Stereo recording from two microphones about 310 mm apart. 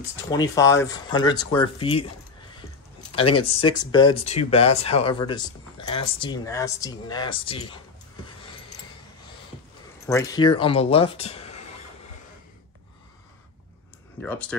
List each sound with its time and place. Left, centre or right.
0.3 s speech: centre
3.1 s a sound: centre
3.4 s speech: centre
10.0 s speech: centre